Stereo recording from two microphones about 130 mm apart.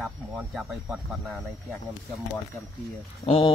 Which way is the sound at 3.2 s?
40° left (ahead or behind).